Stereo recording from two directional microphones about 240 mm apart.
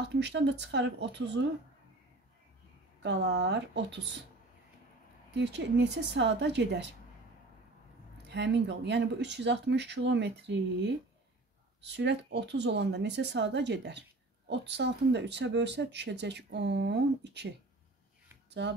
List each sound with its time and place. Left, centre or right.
0.1 s speech: right
3.0 s speech: right
5.3 s speech: right
8.3 s speech: right